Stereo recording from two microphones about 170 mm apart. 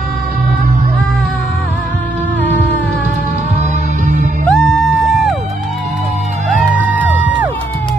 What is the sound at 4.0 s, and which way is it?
Music, 45° right (ahead or behind).